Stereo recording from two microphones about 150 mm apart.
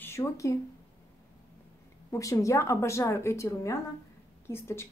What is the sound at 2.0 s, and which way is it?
A woman's voice, 20° left (ahead or behind).